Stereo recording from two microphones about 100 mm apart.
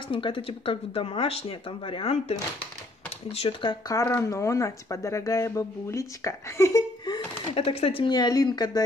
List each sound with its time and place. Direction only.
0.1 s speech: 60° left (ahead or behind); by 3.5 s 75° left (ahead or behind)
3.9 s speech: 25° left (ahead or behind)
7.5 s speech: 75° left (ahead or behind)
8.1 s speech: 45° left (ahead or behind)